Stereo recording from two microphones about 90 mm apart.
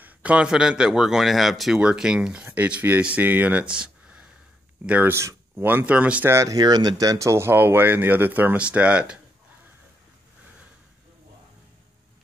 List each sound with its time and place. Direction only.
0.0 s speech: 15° right (ahead or behind)
5.1 s speech: 25° right (ahead or behind)
6.2 s speech: 35° right (ahead or behind); by 9.2 s 10° right (ahead or behind)